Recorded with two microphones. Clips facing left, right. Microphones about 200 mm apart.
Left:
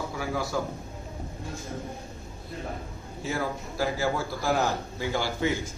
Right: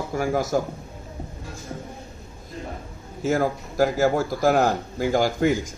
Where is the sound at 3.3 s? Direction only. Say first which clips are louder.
Right 8 dB; 45° right (ahead or behind).